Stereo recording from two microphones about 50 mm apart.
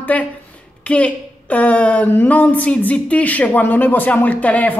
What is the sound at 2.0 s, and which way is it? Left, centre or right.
Speech, left.